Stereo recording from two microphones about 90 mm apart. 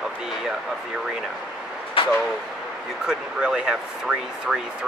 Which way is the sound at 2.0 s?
90° left.